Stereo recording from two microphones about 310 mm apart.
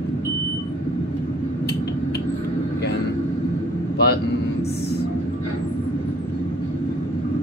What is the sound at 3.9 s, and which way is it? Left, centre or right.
Vehicle, left.